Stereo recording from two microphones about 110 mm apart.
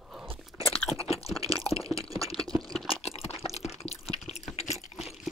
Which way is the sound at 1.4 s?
60° left (ahead or behind).